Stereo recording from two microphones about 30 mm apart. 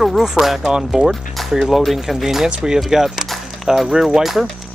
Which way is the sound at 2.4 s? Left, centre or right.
Right.